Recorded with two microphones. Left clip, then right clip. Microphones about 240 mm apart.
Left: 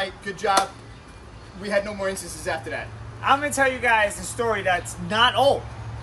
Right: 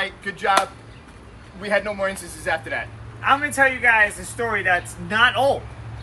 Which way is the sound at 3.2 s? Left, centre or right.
Left.